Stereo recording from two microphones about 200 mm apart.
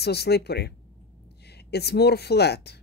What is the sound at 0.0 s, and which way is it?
Speech, 55° left (ahead or behind).